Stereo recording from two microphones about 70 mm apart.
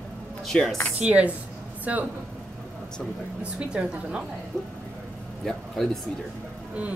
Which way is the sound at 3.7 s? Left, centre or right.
Centre.